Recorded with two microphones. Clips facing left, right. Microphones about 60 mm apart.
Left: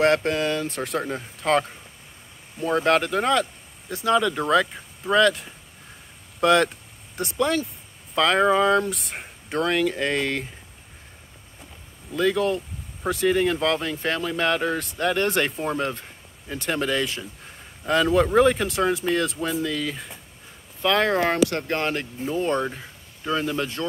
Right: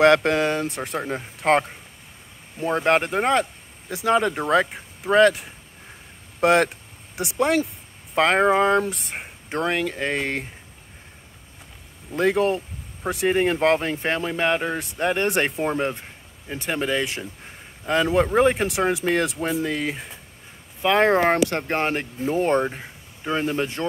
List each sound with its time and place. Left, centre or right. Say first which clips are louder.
0.0 s speech: right 4 dB; right
0.7 s speech: left 1 dB; centre
1.1 s speech: right 3 dB; right
7.3 s speech: right 3 dB; right
9.2 s speech: even; right
12.1 s speech: right 2 dB; right
13.0 s speech: left 1 dB; centre
13.3 s speech: right 4 dB; right